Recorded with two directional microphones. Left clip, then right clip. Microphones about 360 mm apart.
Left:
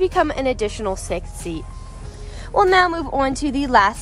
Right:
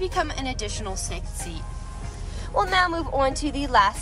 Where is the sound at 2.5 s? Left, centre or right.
Left.